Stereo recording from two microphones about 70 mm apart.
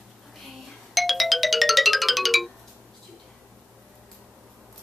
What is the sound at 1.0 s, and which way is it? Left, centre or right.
Music, centre.